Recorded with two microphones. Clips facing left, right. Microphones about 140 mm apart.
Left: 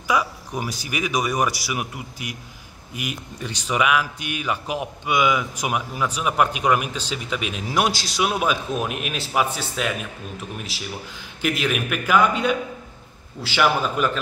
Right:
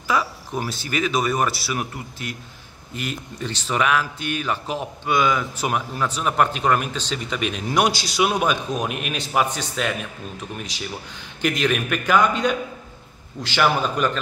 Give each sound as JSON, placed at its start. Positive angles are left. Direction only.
{"t": 0.1, "sound": "speech", "side_deg": 15}